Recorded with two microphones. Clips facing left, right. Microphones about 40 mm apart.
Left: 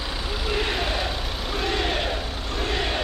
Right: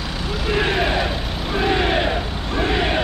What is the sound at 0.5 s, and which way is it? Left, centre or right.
Vehicle, right.